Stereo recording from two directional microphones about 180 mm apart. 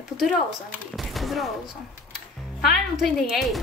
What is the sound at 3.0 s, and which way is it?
Speech, centre (ahead or behind).